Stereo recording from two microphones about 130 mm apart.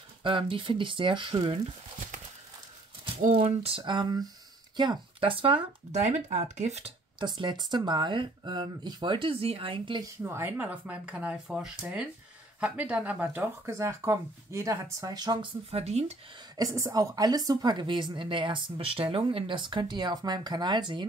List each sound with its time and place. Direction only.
0.2 s a woman's voice: 40° right (ahead or behind)
3.3 s a woman's voice: 50° right (ahead or behind)
5.9 s speech: 60° right (ahead or behind)
7.2 s a woman's voice: 35° right (ahead or behind)
10.1 s speech: 20° right (ahead or behind)
15.7 s speech: 55° right (ahead or behind)
16.5 s a woman's voice: 25° right (ahead or behind)